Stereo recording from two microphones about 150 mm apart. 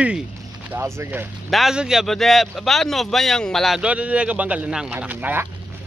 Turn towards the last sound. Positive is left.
turn(degrees=-10)  # may be behind; listen again after turning